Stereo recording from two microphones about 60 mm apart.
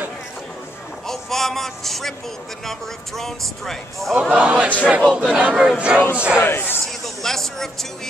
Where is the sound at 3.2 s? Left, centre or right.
Centre.